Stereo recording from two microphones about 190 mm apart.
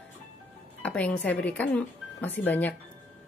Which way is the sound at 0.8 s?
5° left (ahead or behind).